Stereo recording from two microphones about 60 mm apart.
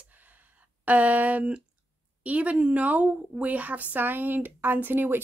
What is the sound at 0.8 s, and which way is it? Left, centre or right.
Speech, right.